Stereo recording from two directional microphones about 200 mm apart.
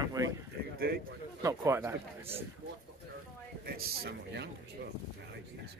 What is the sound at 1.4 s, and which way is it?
Speech, 15° right (ahead or behind).